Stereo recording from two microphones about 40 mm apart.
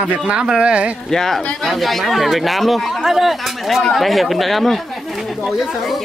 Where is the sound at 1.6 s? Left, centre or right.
Centre.